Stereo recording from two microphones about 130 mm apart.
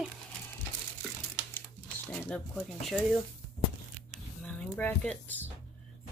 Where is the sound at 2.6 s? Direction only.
5° right (ahead or behind).